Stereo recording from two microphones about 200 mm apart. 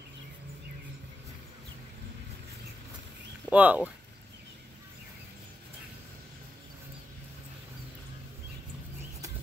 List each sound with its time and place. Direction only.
3.4 s speech: 5° right (ahead or behind)